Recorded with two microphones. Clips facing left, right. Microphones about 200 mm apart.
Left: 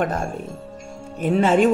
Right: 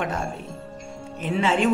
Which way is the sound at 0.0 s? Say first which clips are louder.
Left 4 dB; 45° left (ahead or behind).